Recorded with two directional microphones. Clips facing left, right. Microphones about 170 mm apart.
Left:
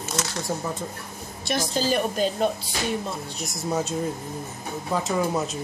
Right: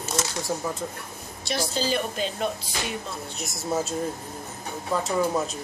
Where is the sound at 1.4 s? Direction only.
50° left (ahead or behind).